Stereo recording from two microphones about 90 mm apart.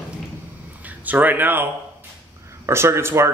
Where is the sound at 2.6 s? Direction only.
30° right (ahead or behind).